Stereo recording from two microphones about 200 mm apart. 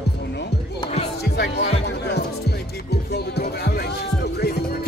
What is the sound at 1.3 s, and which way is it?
Music, 55° left (ahead or behind).